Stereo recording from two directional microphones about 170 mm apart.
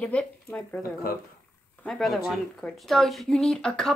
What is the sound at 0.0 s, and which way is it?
Speech, 10° left (ahead or behind).